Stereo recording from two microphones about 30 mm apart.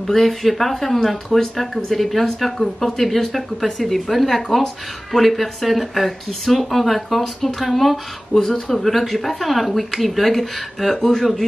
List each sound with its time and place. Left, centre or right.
0.1 s speech: centre
8.4 s speech: centre
8.8 s speech: centre